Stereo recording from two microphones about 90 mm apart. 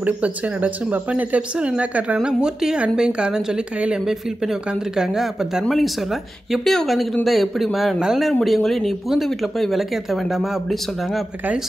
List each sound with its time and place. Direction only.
0.0 s speech: 15° right (ahead or behind)